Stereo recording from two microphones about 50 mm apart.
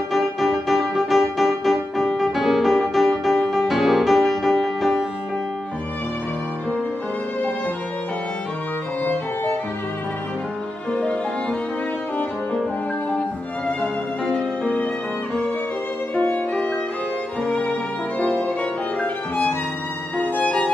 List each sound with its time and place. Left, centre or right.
0.1 s music: centre
9.0 s violin: left
10.9 s music: left
17.5 s music: centre